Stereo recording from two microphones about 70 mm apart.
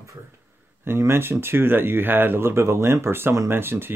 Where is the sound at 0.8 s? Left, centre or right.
Right.